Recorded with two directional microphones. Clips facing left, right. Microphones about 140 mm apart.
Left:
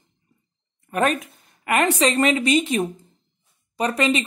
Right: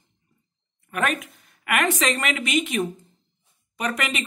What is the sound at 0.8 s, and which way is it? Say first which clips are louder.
A woman's voice: left 4 dB; 35° left (ahead or behind).